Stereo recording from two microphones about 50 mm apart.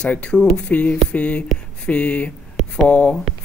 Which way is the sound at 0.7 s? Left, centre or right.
Left.